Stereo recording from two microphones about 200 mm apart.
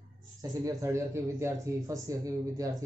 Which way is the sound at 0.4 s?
15° right (ahead or behind).